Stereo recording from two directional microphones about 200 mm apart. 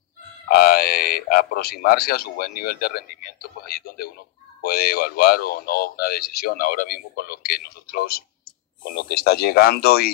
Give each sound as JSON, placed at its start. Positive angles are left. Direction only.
{"t": 0.7, "sound": "speech", "side_deg": 50}